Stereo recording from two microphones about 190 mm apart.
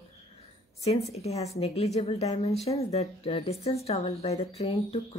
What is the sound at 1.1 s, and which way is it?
Speech, 35° left (ahead or behind).